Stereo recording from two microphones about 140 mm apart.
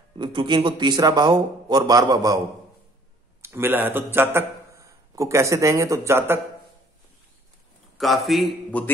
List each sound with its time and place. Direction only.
0.2 s a man's voice: 35° right (ahead or behind)
3.4 s a man's voice: 15° right (ahead or behind)
8.0 s a man's voice: centre (ahead or behind)